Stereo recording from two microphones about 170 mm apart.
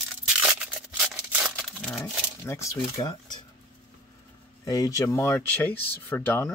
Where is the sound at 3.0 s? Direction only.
30° left (ahead or behind).